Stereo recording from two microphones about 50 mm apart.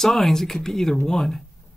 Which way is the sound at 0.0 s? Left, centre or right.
Centre.